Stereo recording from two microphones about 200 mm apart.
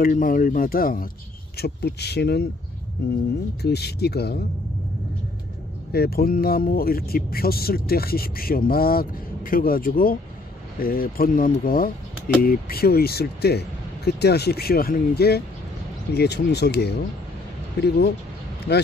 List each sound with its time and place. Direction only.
0.0 s speech: 45° left (ahead or behind)
3.6 s speech: 55° left (ahead or behind)
5.9 s speech: 50° left (ahead or behind)